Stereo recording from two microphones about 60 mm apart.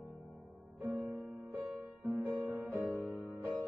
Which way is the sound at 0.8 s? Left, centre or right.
Right.